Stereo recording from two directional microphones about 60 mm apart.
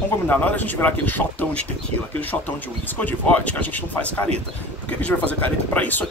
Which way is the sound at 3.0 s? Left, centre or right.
Left.